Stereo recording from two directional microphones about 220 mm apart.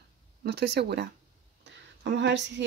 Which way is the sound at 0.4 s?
50° right (ahead or behind).